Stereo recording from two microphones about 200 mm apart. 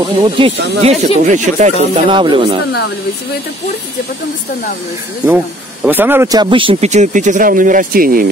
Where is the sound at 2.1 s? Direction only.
25° right (ahead or behind).